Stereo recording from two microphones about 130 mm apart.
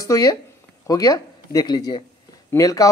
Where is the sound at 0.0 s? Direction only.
25° left (ahead or behind).